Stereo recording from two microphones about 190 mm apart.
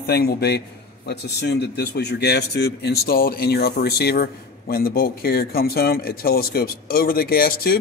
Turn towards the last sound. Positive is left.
turn(degrees=50)  # may be behind; listen again after turning